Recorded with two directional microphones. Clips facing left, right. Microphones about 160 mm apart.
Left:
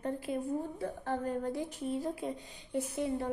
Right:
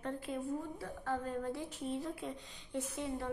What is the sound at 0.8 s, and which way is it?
A woman's voice, 45° left (ahead or behind).